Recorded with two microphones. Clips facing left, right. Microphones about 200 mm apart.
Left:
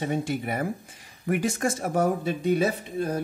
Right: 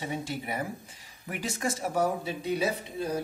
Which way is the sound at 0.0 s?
55° left (ahead or behind).